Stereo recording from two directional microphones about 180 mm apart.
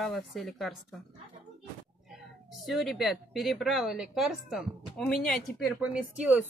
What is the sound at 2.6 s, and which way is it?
A woman's voice, centre (ahead or behind).